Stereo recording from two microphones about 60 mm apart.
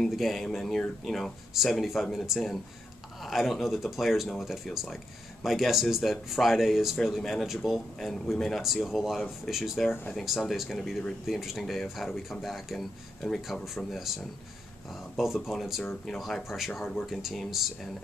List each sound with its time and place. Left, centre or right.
0.1 s speech: centre